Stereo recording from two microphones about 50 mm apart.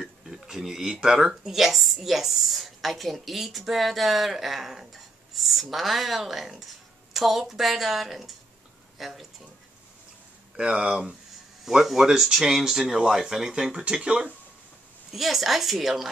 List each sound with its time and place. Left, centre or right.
0.0 s a woman's voice: centre
10.5 s speech: right
11.6 s speech: centre; by 14.2 s right
15.1 s a woman's voice: centre